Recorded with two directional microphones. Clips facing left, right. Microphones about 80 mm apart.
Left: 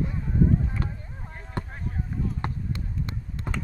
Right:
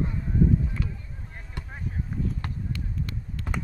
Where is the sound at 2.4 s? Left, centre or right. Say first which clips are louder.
Left 2 dB; left.